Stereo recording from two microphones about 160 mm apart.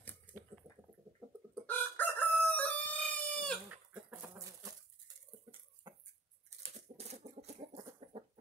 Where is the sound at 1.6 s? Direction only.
10° left (ahead or behind).